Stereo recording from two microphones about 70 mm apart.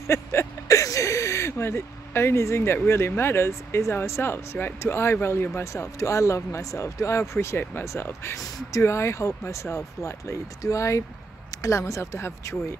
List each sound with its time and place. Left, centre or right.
0.0 s a sound: left
3.1 s speech: left
5.6 s speech: left
8.4 s speech: left
8.8 s speech: left